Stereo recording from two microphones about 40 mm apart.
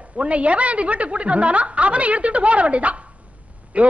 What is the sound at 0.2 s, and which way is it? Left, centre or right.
A man's voice, right.